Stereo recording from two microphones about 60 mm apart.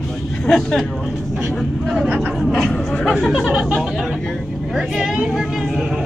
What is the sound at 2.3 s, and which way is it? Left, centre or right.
Speech, centre.